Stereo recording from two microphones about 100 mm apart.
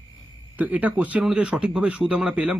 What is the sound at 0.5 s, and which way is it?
Speech, 15° right (ahead or behind).